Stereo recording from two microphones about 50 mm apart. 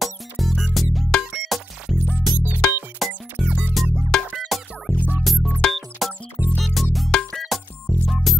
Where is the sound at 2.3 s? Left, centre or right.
Right.